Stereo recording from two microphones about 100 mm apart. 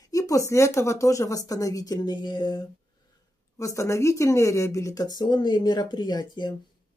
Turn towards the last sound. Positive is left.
turn(degrees=50)  # may be behind; listen again after turning